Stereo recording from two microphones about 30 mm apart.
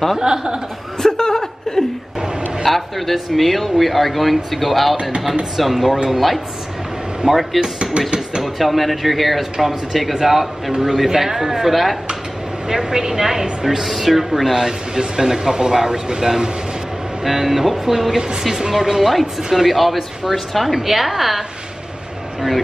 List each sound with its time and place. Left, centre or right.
0.2 s speech: right
1.0 s chuckle: centre
2.6 s speech: centre
7.2 s speech: right
8.5 s a woman's voice: centre
12.6 s a woman's voice: centre
14.5 s speech: right
17.2 s a woman's voice: centre